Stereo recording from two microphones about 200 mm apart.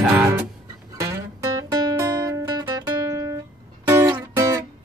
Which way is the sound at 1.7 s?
20° right (ahead or behind).